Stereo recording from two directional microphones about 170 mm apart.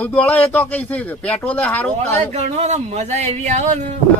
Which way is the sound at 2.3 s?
40° right (ahead or behind).